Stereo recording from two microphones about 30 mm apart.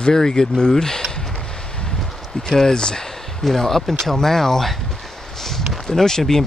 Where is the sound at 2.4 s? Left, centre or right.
Centre.